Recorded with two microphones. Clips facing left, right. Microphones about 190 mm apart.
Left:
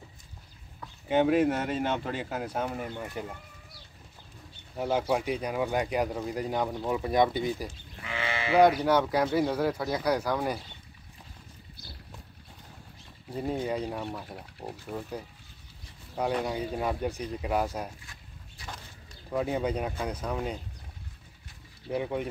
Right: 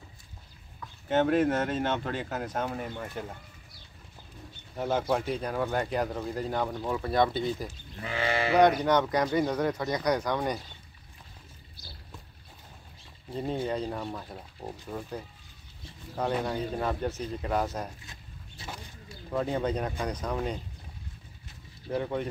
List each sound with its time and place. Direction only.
1.0 s speech: 10° left (ahead or behind)
4.7 s speech: 10° left (ahead or behind)
8.0 s livestock: 40° right (ahead or behind)
8.5 s speech: 5° left (ahead or behind)
13.3 s speech: 10° left (ahead or behind)
16.4 s speech: 10° left (ahead or behind)
18.6 s bird: 25° right (ahead or behind)
19.3 s speech: 10° left (ahead or behind)
21.9 s speech: 10° left (ahead or behind)